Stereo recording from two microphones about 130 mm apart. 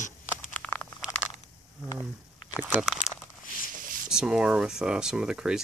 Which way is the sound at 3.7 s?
90° right.